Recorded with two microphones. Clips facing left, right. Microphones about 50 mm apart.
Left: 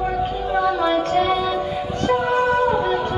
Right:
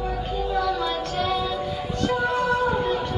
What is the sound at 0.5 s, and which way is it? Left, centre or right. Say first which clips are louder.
Music: left 7 dB; left.